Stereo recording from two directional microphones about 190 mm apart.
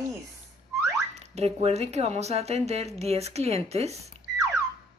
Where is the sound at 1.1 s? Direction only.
35° right (ahead or behind).